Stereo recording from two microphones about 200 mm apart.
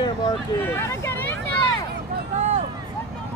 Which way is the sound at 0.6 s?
10° left (ahead or behind).